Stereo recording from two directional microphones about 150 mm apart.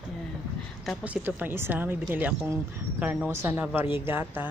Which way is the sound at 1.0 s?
10° right (ahead or behind).